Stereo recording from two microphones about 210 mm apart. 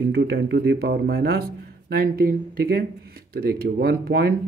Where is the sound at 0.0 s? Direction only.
50° right (ahead or behind).